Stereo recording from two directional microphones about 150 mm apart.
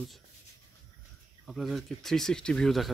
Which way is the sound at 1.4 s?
Centre (ahead or behind).